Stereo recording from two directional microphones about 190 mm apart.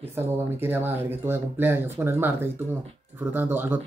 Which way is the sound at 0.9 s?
30° right (ahead or behind).